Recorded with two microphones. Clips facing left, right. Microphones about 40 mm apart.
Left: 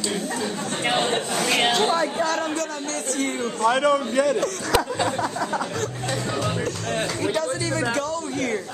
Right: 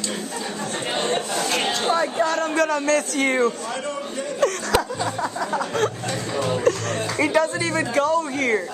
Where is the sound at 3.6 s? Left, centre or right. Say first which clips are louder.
Left 9 dB; left.